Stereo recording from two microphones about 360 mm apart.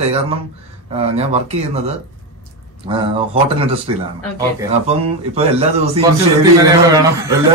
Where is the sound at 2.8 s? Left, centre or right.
Centre.